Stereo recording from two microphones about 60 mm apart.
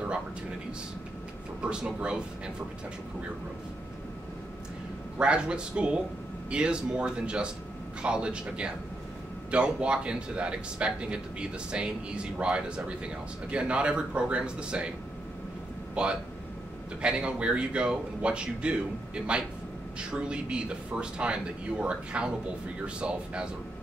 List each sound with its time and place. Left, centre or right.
1.6 s speech: centre
5.2 s speech: centre
15.9 s speech: centre